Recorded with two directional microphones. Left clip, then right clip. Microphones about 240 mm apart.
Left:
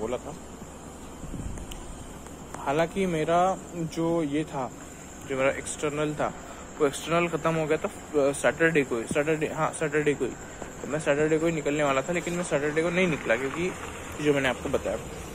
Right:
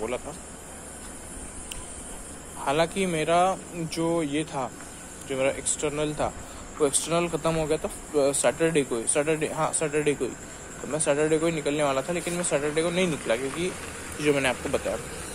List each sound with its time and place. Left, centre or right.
2.6 s speech: centre